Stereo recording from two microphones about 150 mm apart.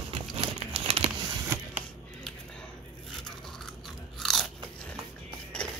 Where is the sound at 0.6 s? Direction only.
40° right (ahead or behind).